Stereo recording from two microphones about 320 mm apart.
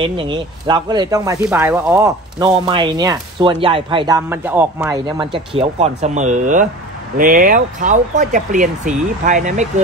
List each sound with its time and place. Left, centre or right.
0.0 s speech: centre